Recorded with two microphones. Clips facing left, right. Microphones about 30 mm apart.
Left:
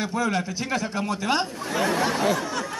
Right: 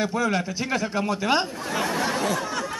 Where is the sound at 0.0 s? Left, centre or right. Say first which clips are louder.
Right 1 dB; centre.